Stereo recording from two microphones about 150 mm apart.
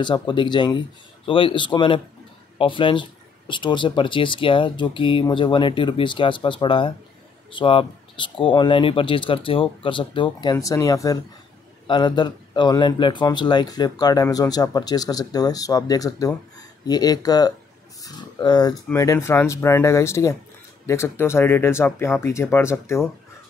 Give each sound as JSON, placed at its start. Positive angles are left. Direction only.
{"t": 0.0, "sound": "speech", "side_deg": 30}